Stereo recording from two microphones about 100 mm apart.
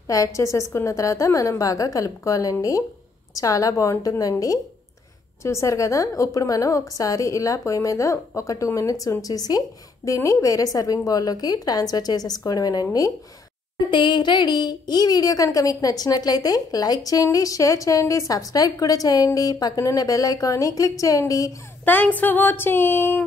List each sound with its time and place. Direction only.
0.0 s a woman's voice: 35° left (ahead or behind)
13.8 s a woman's voice: 50° left (ahead or behind); by 21.5 s 35° left (ahead or behind)
21.8 s speech: 15° left (ahead or behind)